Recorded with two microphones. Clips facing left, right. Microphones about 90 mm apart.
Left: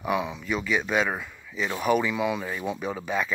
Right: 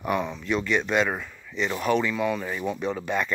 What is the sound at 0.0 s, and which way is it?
Speech, 5° left (ahead or behind).